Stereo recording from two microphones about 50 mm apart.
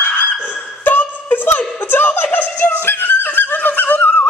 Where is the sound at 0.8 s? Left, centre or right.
Left.